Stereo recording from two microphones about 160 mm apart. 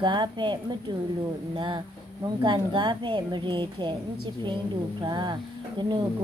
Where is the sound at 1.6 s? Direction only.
30° right (ahead or behind).